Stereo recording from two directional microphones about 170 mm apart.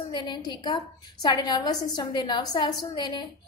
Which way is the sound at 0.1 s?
25° left (ahead or behind).